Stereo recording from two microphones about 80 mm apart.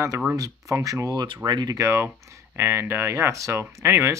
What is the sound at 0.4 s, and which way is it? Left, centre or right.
Speech, right.